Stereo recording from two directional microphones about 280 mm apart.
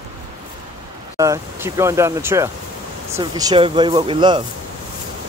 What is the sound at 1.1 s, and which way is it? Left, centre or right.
Speech, centre.